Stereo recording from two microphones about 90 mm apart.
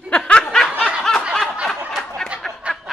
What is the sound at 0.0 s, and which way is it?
Snicker, 10° left (ahead or behind).